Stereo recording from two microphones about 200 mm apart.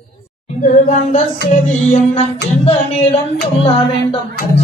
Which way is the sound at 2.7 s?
30° left (ahead or behind).